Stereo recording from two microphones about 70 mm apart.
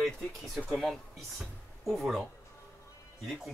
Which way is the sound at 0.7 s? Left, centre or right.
Centre.